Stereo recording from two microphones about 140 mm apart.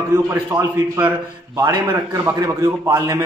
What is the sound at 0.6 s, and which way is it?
A man's voice, 20° right (ahead or behind).